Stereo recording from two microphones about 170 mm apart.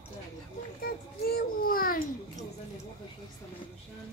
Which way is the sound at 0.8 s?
65° left (ahead or behind).